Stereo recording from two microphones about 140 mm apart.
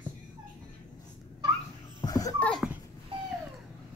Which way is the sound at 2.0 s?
25° left (ahead or behind).